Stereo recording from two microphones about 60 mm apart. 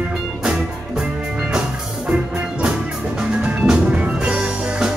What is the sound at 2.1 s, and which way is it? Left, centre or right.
Music, centre.